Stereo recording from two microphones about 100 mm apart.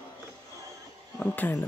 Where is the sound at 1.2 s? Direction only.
15° left (ahead or behind).